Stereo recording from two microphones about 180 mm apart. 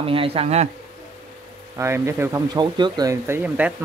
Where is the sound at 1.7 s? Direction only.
15° right (ahead or behind).